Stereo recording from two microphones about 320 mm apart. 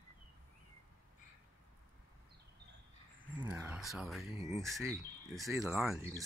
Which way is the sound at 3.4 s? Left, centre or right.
Centre.